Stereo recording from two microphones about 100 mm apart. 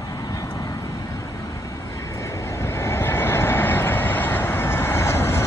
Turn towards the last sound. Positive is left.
turn(degrees=25)  # may be behind; listen again after turning